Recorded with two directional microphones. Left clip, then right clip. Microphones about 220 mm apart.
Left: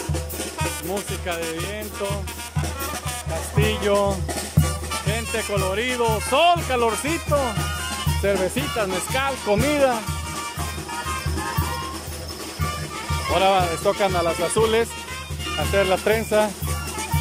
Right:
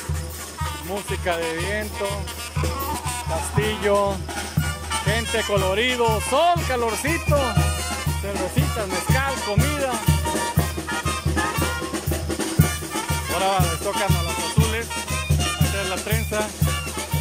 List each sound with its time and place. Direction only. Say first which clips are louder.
3.5 s music: even; 5° left (ahead or behind)
4.6 s speech: right 2 dB; 10° left (ahead or behind)
8.3 s music: left 5 dB; 15° left (ahead or behind)
13.3 s music: left 4 dB; 15° left (ahead or behind)
14.6 s speech: left 6 dB; 30° left (ahead or behind)